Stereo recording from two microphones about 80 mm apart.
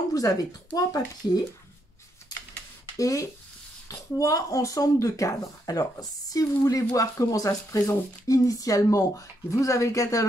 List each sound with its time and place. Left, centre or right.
0.1 s speech: left
3.0 s speech: left